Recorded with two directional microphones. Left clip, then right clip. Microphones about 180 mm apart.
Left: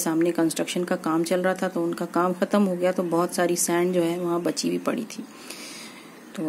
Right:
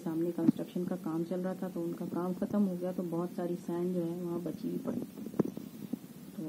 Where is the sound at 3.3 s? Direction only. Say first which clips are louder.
Left 14 dB; 25° left (ahead or behind).